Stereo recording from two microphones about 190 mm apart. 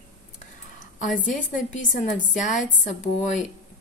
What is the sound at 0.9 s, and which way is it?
A woman's voice, 40° left (ahead or behind).